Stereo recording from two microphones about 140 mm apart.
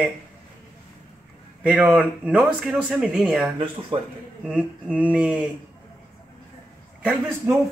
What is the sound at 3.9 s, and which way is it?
Speech, 45° right (ahead or behind).